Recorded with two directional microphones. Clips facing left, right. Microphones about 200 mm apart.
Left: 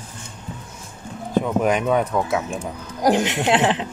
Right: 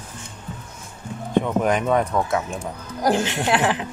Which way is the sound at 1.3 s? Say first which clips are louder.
Left 1 dB; 5° left (ahead or behind).